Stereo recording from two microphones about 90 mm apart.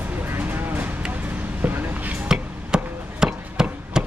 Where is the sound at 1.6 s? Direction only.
20° right (ahead or behind).